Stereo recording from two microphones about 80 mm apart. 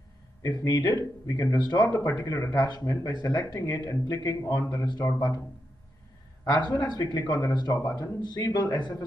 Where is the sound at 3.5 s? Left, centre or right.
Left.